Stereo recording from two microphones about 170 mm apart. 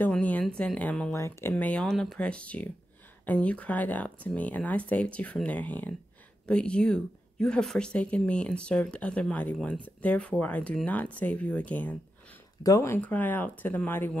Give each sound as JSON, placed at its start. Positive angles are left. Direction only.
{"t": 0.0, "sound": "speech", "side_deg": 10}
{"t": 1.5, "sound": "a woman's voice", "side_deg": 5}